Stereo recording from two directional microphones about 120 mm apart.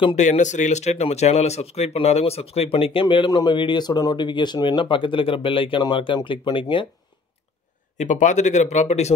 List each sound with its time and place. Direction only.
0.1 s speech: 80° left; by 6.9 s 45° left (ahead or behind)
8.0 s speech: 85° left; by 9.1 s 65° left (ahead or behind)